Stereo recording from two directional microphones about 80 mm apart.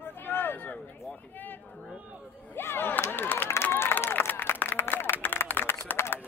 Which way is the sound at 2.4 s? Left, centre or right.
Left.